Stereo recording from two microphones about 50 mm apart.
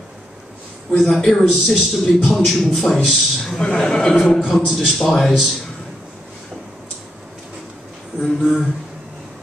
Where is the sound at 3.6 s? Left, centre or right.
Centre.